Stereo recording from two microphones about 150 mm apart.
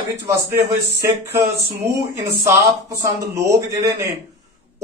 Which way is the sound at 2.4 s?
20° right (ahead or behind).